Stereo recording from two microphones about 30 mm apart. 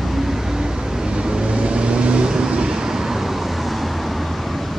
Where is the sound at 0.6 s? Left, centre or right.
Right.